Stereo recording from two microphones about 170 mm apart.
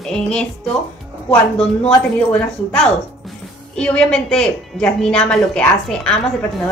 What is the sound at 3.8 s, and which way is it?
A woman's voice, 5° left (ahead or behind).